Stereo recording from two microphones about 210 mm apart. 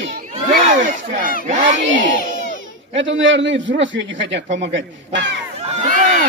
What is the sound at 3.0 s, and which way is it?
A man's voice, 60° right (ahead or behind).